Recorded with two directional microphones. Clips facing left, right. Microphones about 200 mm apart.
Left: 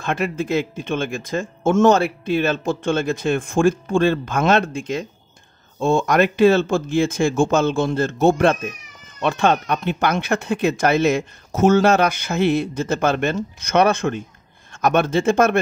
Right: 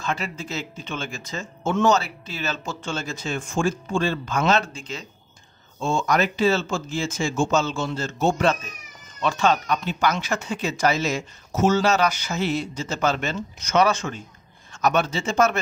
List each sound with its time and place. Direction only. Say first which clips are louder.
0.0 s speech: left 6 dB; 55° left (ahead or behind)